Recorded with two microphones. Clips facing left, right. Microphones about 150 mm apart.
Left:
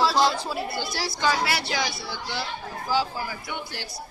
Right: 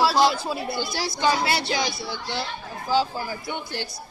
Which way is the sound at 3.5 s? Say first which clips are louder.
Right 3 dB; 25° right (ahead or behind).